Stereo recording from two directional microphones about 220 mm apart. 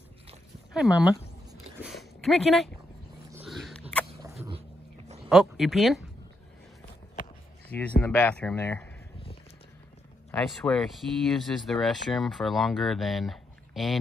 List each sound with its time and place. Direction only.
0.7 s speech: 5° right (ahead or behind)
1.9 s a sound: centre (ahead or behind)
4.4 s dog: 25° right (ahead or behind)
5.3 s speech: centre (ahead or behind)
7.7 s speech: 5° left (ahead or behind)
10.3 s speech: 5° left (ahead or behind)